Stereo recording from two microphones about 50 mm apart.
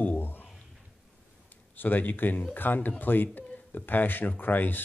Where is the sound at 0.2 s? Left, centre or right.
Left.